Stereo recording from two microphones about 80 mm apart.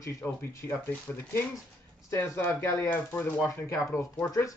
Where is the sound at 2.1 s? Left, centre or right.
Left.